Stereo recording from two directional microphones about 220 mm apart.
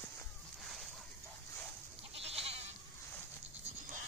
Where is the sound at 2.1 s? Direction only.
25° right (ahead or behind).